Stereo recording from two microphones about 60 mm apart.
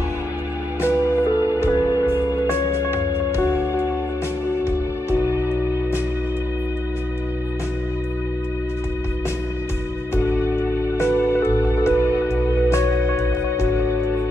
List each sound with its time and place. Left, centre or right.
0.8 s music: left
10.1 s music: left